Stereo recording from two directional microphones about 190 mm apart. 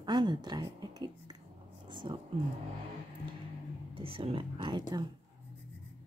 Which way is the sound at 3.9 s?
30° right (ahead or behind).